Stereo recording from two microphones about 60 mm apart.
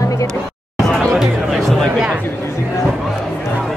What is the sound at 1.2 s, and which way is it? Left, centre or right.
Music, centre.